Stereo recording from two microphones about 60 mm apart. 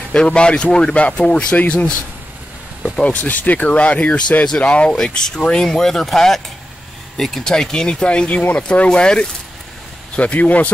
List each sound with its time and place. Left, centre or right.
0.1 s speech: centre
3.0 s speech: left
4.9 s speech: centre; by 10.7 s left